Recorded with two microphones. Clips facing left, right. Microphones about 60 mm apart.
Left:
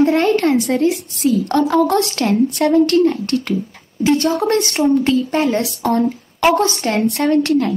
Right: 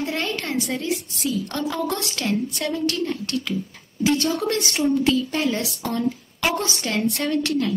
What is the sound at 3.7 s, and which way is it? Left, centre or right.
Speech, left.